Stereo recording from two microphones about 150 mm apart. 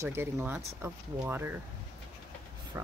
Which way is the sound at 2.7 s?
20° right (ahead or behind).